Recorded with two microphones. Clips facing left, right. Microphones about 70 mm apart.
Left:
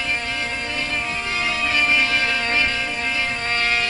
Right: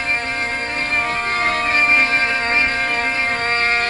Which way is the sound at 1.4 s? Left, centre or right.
Right.